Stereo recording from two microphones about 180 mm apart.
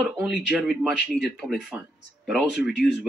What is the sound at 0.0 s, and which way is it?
Speech, centre (ahead or behind).